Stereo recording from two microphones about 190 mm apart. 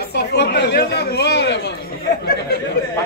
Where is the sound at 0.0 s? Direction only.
60° left (ahead or behind).